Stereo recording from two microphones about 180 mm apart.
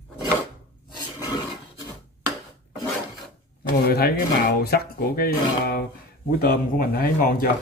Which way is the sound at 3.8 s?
55° left (ahead or behind).